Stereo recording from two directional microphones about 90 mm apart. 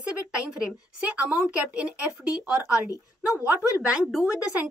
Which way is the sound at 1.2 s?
15° right (ahead or behind).